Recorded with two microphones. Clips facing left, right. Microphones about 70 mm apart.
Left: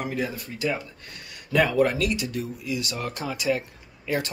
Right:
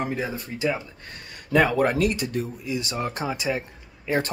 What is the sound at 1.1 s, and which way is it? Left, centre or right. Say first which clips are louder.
Speech: right 2 dB; right.